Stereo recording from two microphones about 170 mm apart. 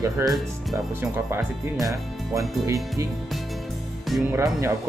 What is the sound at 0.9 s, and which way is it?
Speech, 15° right (ahead or behind).